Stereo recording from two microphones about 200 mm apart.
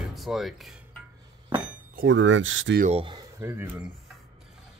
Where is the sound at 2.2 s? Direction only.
75° right (ahead or behind).